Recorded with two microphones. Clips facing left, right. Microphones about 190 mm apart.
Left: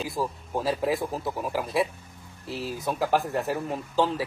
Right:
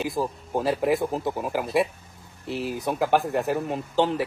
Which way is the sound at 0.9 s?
20° right (ahead or behind).